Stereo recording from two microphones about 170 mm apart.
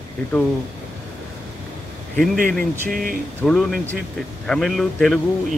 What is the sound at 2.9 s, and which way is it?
Speech, 55° right (ahead or behind).